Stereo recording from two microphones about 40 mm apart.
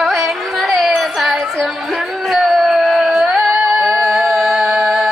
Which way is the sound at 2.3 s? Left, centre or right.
Centre.